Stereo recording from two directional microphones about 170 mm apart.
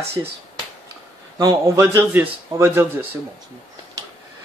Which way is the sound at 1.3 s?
20° right (ahead or behind).